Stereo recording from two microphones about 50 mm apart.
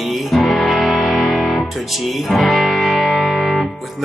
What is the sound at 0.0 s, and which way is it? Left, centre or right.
Music, centre.